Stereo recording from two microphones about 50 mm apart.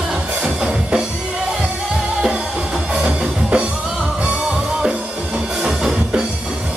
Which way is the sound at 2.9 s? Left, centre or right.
Right.